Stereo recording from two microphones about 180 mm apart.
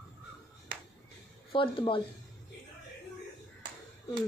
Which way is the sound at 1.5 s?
30° left (ahead or behind).